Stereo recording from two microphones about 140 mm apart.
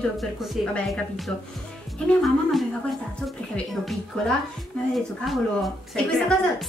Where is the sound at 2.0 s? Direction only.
Centre (ahead or behind).